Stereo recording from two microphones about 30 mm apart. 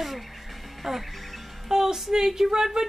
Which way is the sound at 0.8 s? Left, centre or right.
Centre.